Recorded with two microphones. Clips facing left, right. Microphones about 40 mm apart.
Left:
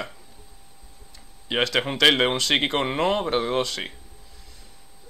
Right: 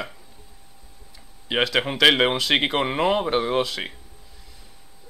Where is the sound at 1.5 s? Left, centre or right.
Centre.